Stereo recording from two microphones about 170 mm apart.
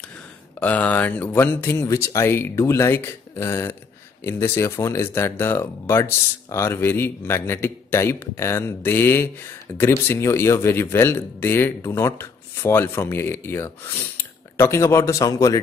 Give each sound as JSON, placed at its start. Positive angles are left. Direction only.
{"t": 0.6, "sound": "speech", "side_deg": 10}